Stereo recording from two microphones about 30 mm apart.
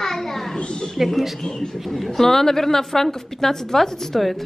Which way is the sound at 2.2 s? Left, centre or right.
Centre.